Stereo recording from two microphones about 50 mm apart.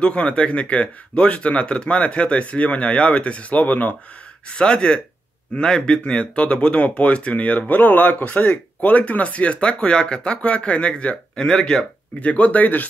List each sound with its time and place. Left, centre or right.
0.0 s speech: left
4.5 s speech: centre
11.4 s speech: centre
12.2 s speech: left